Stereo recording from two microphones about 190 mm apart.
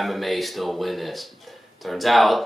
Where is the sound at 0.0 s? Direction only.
Centre (ahead or behind).